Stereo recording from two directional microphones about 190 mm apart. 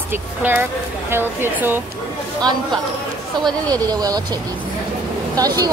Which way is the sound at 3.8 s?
20° right (ahead or behind).